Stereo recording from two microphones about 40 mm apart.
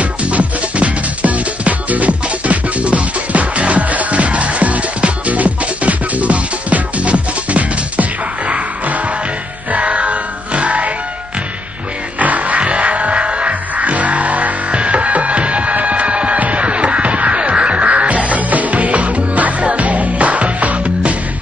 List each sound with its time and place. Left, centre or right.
0.0 s music: right
12.2 s music: right